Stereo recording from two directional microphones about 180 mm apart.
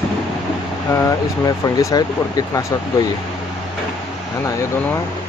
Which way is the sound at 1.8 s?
20° left (ahead or behind).